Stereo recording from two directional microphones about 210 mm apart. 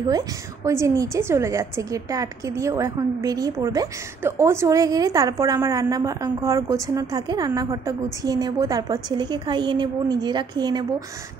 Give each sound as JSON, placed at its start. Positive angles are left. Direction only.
{"t": 0.7, "sound": "a woman's voice", "side_deg": -15}